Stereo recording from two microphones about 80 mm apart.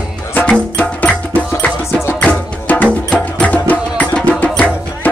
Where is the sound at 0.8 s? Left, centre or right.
Centre.